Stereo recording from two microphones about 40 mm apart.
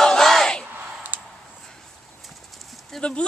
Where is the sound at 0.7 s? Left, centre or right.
Right.